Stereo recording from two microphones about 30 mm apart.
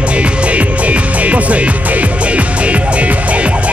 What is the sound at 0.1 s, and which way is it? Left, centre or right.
Music, right.